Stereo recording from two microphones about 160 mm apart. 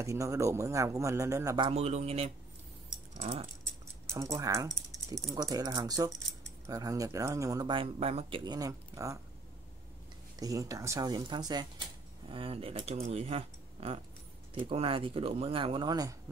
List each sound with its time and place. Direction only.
0.0 s speech: 20° right (ahead or behind)
1.7 s speech: 40° right (ahead or behind)
4.1 s speech: 20° right (ahead or behind); by 8.4 s 40° right (ahead or behind)
8.5 s speech: 20° right (ahead or behind)
10.4 s speech: 20° right (ahead or behind)